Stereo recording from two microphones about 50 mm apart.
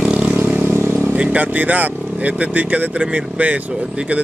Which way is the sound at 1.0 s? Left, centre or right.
Right.